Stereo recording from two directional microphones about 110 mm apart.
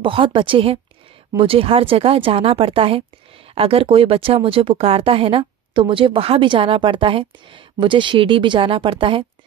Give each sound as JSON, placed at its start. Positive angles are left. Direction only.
{"t": 0.0, "sound": "speech", "side_deg": -50}